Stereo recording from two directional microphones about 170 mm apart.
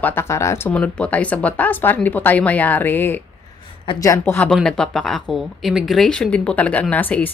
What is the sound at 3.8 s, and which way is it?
Speech, 25° left (ahead or behind).